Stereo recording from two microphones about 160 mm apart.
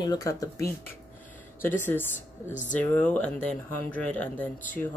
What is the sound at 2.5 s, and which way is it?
Speech, 50° left (ahead or behind).